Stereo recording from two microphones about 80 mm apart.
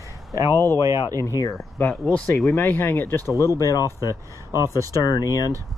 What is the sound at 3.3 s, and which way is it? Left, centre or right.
Speech, left.